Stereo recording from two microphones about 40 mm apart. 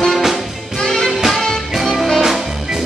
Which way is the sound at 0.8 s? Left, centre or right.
Centre.